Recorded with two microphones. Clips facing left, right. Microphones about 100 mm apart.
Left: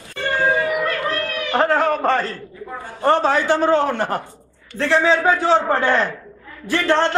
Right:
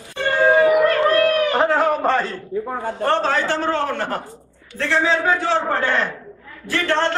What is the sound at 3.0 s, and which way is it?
A man's voice, 10° left (ahead or behind).